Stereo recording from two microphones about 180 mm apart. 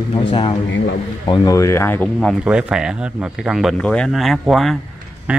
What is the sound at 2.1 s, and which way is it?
Speech, 5° right (ahead or behind).